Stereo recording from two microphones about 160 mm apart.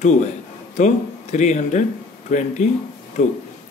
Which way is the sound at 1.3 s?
45° left (ahead or behind).